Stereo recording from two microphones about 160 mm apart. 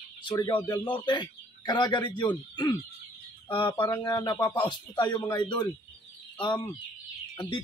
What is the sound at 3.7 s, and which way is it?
Speech, 15° left (ahead or behind).